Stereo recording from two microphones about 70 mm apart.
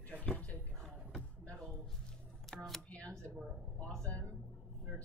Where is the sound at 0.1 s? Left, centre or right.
Centre.